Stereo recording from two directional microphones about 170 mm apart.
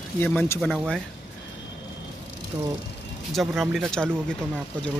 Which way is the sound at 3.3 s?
Centre (ahead or behind).